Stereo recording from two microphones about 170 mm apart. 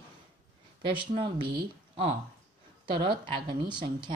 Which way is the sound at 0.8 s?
30° right (ahead or behind).